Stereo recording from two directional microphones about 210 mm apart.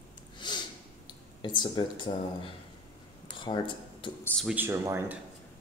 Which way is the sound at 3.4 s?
20° left (ahead or behind).